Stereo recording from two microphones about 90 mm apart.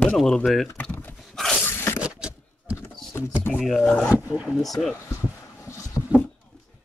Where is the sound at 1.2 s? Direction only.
5° left (ahead or behind).